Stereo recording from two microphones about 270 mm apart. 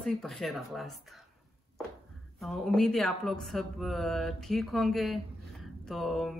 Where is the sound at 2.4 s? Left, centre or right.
Centre.